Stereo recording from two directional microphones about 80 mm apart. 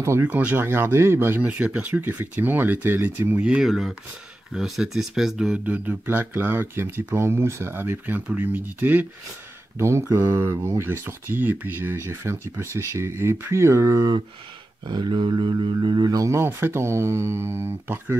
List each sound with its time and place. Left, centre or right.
0.2 s speech: centre
3.6 s speech: centre; by 9.0 s right
9.8 s speech: right
14.9 s speech: right
16.3 s speech: right